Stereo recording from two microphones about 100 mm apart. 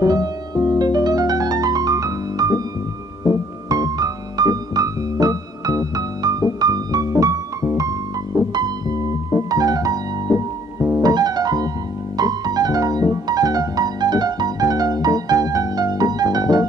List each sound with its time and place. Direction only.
0.0 s music: 35° right (ahead or behind)
3.6 s piano: 40° right (ahead or behind)
12.2 s music: 40° right (ahead or behind)